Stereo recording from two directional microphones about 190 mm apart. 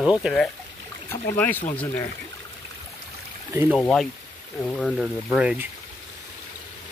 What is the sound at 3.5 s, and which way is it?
Speech, 10° right (ahead or behind).